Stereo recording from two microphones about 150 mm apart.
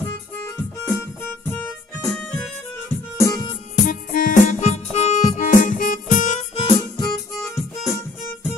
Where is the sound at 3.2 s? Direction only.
20° left (ahead or behind).